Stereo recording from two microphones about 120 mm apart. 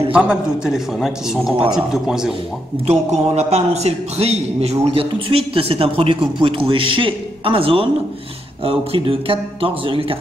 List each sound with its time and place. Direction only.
0.1 s a man's voice: 10° right (ahead or behind)
2.9 s a man's voice: 65° right (ahead or behind)